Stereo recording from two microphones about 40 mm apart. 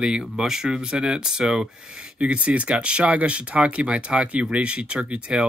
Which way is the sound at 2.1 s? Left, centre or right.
Right.